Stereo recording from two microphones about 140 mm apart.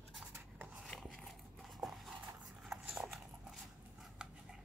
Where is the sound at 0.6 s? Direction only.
Centre (ahead or behind).